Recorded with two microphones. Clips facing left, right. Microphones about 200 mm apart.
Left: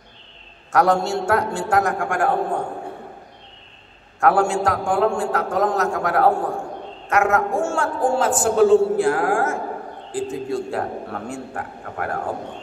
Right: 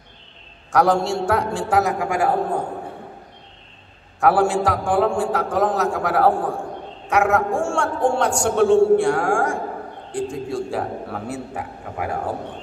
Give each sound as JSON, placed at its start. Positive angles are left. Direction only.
{"t": 0.7, "sound": "a man's voice", "side_deg": 0}
{"t": 4.2, "sound": "a man's voice", "side_deg": 0}